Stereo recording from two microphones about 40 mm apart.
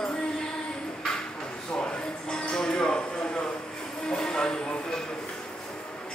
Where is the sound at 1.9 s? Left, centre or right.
Centre.